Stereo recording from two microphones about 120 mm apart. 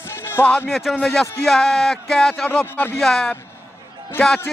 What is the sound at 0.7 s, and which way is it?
Speech, centre (ahead or behind).